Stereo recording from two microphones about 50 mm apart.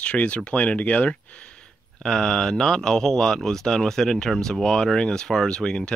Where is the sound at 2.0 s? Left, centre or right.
Centre.